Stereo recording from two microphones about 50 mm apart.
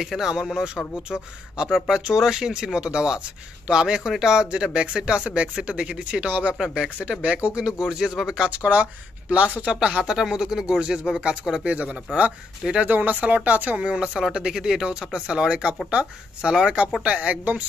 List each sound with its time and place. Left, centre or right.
0.0 s speech: centre
1.9 s speech: centre
8.5 s speech: right
9.8 s speech: centre
12.9 s speech: right
13.7 s speech: right